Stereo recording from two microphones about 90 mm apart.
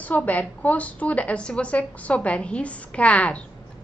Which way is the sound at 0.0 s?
15° left (ahead or behind).